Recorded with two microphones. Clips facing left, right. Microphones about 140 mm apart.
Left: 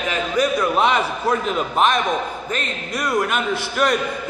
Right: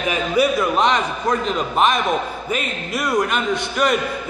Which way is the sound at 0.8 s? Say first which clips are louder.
Even; 5° left (ahead or behind).